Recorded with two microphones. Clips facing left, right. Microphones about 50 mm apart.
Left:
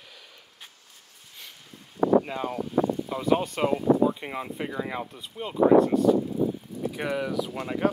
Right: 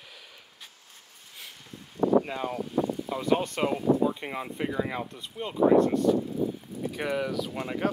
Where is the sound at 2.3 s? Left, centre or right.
Centre.